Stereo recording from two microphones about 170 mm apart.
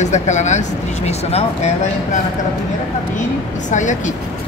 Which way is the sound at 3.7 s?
45° left (ahead or behind).